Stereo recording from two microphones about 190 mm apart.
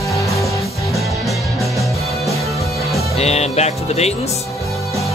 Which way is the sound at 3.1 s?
35° left (ahead or behind).